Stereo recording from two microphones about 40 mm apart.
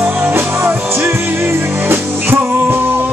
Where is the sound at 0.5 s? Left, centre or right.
Right.